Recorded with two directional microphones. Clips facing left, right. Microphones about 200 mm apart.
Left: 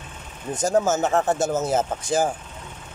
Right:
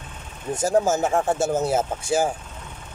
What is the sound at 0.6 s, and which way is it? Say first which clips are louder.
Speech: even; 10° right (ahead or behind).